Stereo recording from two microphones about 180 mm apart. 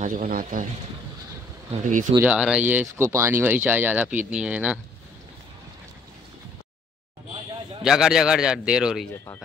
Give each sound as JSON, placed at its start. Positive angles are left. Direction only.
{"t": 0.0, "sound": "speech", "side_deg": -50}
{"t": 1.7, "sound": "speech", "side_deg": -45}
{"t": 2.1, "sound": "speech", "side_deg": -5}
{"t": 7.8, "sound": "a man's voice", "side_deg": -5}